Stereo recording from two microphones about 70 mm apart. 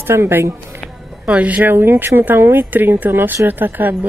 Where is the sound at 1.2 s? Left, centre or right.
Right.